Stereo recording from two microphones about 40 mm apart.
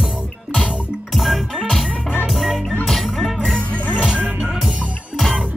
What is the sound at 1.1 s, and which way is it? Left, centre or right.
Music, centre.